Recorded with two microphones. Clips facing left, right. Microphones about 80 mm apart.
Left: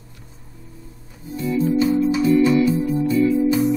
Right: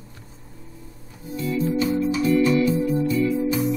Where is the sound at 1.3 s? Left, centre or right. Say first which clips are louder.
Left 4 dB; left.